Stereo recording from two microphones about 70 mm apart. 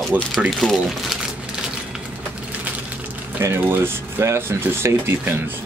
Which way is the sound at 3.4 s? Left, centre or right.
Right.